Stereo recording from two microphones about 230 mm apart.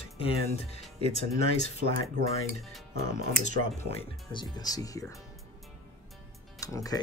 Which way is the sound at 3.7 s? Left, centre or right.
Left.